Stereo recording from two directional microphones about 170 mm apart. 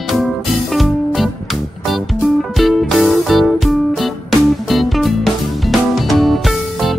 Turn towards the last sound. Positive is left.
turn(degrees=0)  # may be behind; listen again after turning